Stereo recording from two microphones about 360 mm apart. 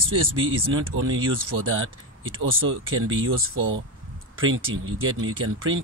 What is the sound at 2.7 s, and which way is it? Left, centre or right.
Speech, right.